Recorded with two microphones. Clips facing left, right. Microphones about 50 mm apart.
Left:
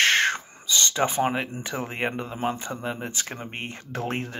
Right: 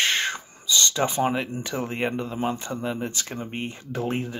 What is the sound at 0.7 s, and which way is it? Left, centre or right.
Speech, left.